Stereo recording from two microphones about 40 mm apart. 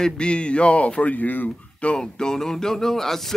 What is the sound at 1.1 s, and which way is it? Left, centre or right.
Speech, left.